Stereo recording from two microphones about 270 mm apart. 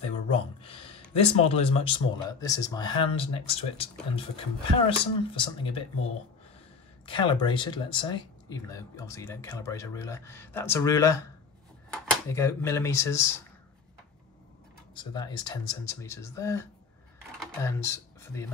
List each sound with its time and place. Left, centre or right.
0.6 s a sound: left
1.1 s speech: left
7.1 s speech: centre
15.0 s speech: centre